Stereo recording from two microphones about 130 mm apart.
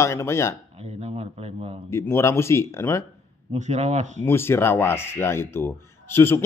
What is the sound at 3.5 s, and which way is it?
Speech, 60° right (ahead or behind).